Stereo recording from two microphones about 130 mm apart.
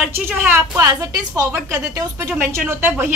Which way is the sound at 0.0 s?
15° right (ahead or behind).